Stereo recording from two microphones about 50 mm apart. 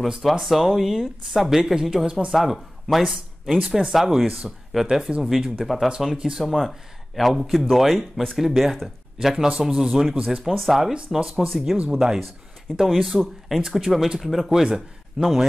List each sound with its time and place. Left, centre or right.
0.0 s speech: centre
5.9 s speech: centre
6.4 s speech: centre
10.4 s speech: centre
11.1 s speech: centre
11.4 s speech: centre
15.1 s speech: centre